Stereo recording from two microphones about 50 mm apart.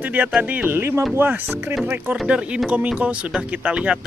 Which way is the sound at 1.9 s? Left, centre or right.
Right.